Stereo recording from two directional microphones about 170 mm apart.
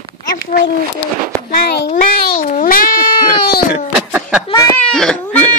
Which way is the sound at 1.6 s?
60° left (ahead or behind).